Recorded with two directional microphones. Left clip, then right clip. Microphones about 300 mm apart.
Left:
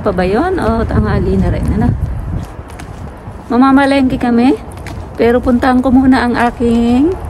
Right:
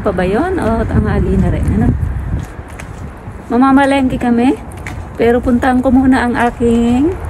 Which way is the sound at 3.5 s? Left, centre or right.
Centre.